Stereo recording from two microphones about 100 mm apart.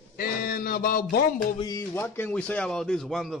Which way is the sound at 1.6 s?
40° left (ahead or behind).